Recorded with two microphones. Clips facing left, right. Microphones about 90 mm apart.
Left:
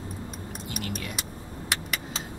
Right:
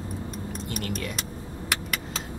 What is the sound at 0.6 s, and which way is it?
Vehicle, 45° right (ahead or behind).